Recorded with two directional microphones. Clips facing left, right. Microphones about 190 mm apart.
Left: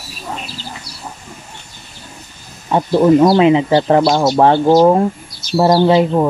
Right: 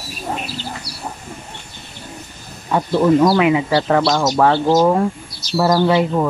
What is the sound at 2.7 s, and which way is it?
Speech, 30° left (ahead or behind).